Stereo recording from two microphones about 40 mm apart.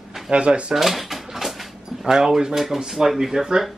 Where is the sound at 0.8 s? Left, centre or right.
Centre.